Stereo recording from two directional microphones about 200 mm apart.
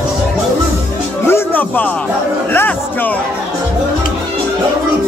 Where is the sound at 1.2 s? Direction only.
10° left (ahead or behind).